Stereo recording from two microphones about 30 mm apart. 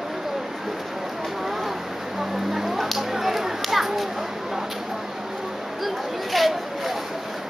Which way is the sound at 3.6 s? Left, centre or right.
Centre.